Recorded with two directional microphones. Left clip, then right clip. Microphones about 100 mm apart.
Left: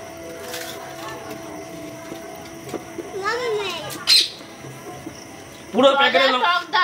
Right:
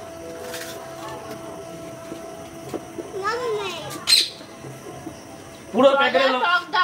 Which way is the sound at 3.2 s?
Centre (ahead or behind).